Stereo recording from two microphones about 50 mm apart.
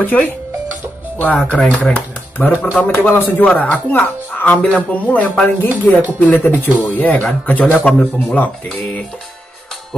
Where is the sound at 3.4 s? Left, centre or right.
Left.